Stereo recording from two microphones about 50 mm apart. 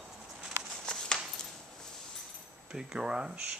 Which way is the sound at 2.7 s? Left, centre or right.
Centre.